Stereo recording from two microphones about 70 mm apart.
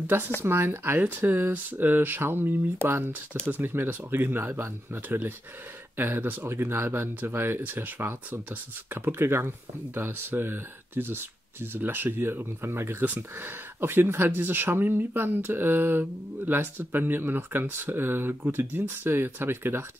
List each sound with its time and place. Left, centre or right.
0.0 s speech: right